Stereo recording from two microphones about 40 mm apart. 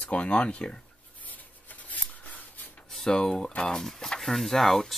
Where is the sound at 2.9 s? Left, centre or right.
Centre.